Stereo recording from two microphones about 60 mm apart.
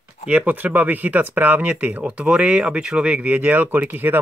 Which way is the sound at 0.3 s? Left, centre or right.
Right.